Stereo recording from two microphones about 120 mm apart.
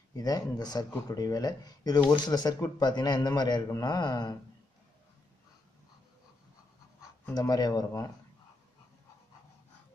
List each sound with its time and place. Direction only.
0.1 s speech: 35° left (ahead or behind)
7.3 s speech: 35° left (ahead or behind)